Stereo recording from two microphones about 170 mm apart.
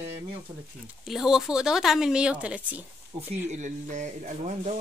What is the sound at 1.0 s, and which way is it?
Speech, centre (ahead or behind).